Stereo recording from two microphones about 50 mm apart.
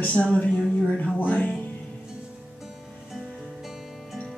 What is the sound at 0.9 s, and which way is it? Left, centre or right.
Music, left.